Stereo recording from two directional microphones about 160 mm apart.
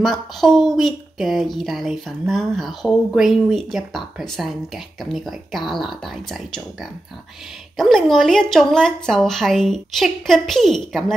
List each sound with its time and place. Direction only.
0.0 s speech: centre (ahead or behind)
7.7 s speech: centre (ahead or behind)